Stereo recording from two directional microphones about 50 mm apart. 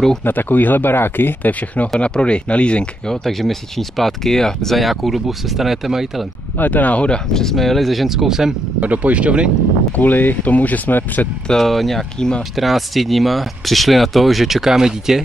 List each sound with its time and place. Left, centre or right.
0.2 s speech: left
2.0 s speech: left
3.1 s speech: centre
4.7 s speech: centre
6.6 s speech: left
7.3 s speech: centre
8.8 s speech: right
9.9 s speech: left
11.4 s speech: centre
12.2 s speech: centre
12.5 s speech: centre